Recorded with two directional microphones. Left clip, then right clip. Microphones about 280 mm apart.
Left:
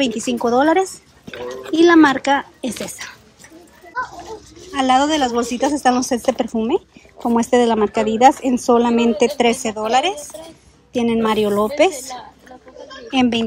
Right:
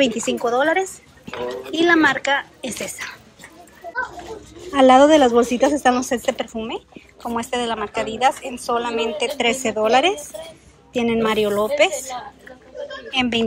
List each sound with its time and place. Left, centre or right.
0.0 s a woman's voice: centre
4.6 s a woman's voice: centre